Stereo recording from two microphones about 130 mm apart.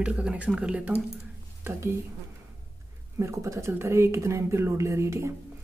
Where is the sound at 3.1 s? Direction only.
20° right (ahead or behind).